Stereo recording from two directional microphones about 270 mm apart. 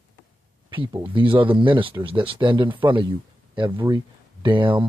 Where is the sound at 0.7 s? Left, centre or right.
Centre.